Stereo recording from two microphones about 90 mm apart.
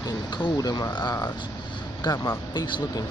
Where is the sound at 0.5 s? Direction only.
50° left (ahead or behind).